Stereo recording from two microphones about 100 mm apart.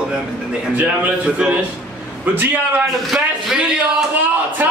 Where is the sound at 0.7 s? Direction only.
15° right (ahead or behind).